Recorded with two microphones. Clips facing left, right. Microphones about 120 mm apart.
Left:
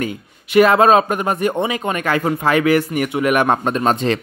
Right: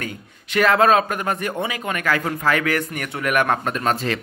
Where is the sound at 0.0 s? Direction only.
15° left (ahead or behind).